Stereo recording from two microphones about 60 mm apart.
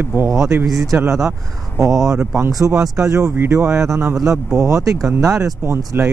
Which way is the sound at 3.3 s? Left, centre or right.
Right.